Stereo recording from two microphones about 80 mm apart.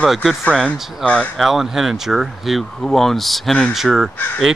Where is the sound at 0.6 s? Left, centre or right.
Centre.